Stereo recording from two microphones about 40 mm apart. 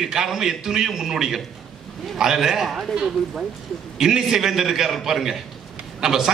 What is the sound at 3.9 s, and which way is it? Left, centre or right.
A man's voice, centre.